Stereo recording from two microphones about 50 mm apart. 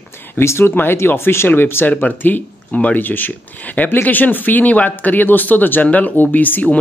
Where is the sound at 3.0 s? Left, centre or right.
Left.